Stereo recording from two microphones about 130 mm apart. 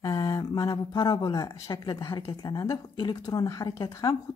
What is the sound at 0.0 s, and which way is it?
Speech, 30° left (ahead or behind).